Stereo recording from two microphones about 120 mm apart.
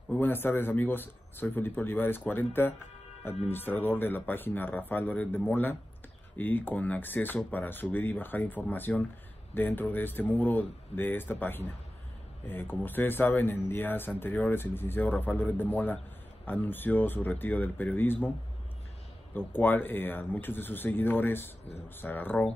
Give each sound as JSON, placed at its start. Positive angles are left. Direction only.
{"t": 0.1, "sound": "speech", "side_deg": 15}
{"t": 19.3, "sound": "speech", "side_deg": 15}